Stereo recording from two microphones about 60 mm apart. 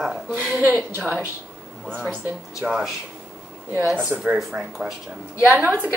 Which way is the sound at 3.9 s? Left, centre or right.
Right.